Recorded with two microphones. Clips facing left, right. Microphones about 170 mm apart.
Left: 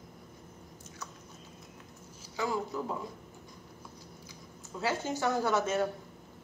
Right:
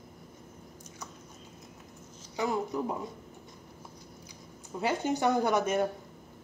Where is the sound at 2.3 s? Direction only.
20° right (ahead or behind).